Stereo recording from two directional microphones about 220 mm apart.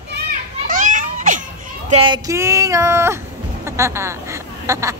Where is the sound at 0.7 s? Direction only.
35° right (ahead or behind).